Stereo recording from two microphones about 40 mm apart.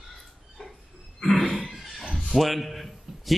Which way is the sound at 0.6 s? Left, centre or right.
Centre.